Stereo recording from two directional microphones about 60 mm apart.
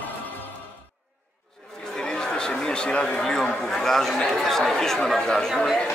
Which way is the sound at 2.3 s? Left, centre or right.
Centre.